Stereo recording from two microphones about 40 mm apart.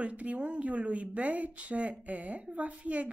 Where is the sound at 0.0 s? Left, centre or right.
Right.